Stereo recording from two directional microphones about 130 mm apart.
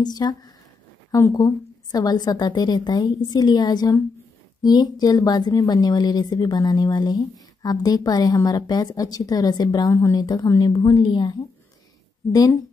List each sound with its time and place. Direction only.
0.0 s speech: 30° left (ahead or behind)